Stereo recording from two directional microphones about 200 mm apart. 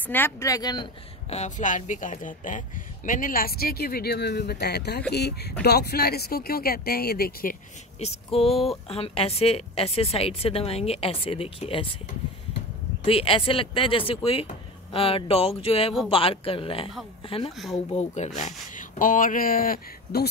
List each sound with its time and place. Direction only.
0.0 s speech: 10° left (ahead or behind)
1.3 s speech: 35° left (ahead or behind)
8.0 s a woman's voice: 30° left (ahead or behind)
13.0 s a woman's voice: 30° left (ahead or behind)
17.9 s speech: 35° left (ahead or behind)